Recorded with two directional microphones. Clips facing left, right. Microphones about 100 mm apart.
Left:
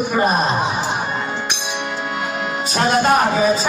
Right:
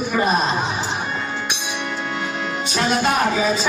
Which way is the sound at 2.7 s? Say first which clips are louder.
Left 4 dB; 40° left (ahead or behind).